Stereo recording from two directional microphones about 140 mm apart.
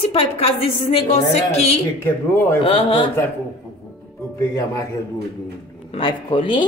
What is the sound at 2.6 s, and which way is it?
Speech, 40° left (ahead or behind).